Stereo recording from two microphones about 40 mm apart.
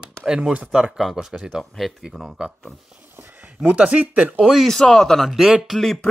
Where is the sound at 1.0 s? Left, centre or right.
Centre.